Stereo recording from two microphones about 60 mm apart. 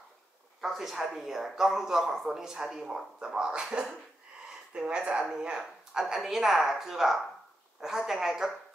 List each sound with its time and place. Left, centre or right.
0.6 s a woman's voice: centre